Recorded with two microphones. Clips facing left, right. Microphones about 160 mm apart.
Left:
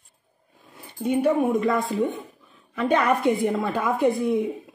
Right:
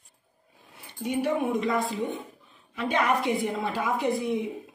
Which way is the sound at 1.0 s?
50° left (ahead or behind).